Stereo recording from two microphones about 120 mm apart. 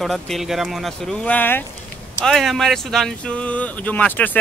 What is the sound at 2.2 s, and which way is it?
Speech, centre (ahead or behind).